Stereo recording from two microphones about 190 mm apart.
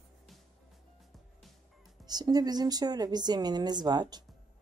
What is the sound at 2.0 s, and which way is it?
A woman's voice, 20° right (ahead or behind).